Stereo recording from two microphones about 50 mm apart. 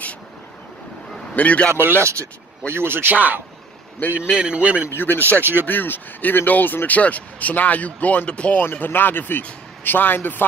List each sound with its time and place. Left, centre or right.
1.3 s a man's voice: left
1.7 s speech: right
3.2 s speech: right
4.3 s a man's voice: right
5.1 s speech: right
5.7 s speech: left
8.7 s a man's voice: left